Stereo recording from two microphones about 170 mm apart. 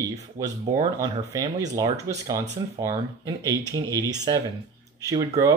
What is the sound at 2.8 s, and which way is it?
Speech, 20° right (ahead or behind).